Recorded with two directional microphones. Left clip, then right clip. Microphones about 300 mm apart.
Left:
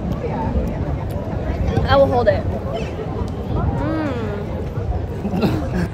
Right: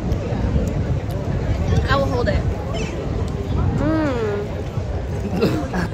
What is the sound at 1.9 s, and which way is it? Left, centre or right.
Speech, centre.